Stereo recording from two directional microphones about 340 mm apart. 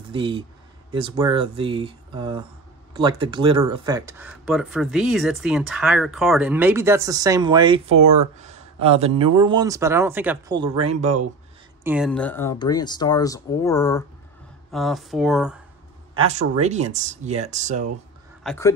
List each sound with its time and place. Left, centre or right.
0.1 s speech: centre
8.4 s a sound: centre
8.8 s speech: centre
11.8 s speech: centre
16.2 s speech: centre
18.4 s speech: centre